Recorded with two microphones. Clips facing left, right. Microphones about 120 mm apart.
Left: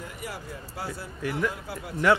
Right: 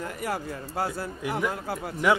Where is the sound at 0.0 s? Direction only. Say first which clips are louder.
Right 7 dB; 50° right (ahead or behind).